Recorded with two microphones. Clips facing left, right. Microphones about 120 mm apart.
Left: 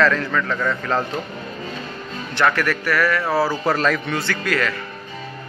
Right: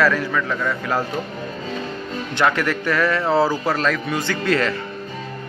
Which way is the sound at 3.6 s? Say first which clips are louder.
Left 1 dB; centre (ahead or behind).